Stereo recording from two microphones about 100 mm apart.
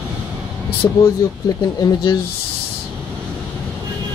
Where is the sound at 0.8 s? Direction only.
30° left (ahead or behind).